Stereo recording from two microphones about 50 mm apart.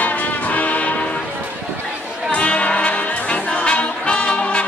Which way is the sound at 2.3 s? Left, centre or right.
Left.